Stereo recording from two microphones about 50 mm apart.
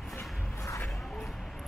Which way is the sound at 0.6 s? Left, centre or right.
Left.